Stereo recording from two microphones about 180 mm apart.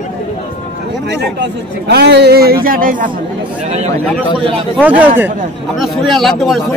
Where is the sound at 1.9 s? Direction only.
65° right (ahead or behind); by 3.1 s 50° right (ahead or behind).